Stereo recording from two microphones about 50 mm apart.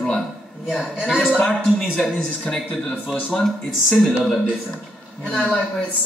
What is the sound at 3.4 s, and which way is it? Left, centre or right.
Speech, centre.